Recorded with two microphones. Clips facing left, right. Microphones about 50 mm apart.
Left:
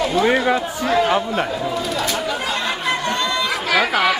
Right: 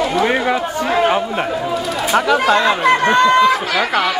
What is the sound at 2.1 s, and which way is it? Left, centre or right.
Speech, right.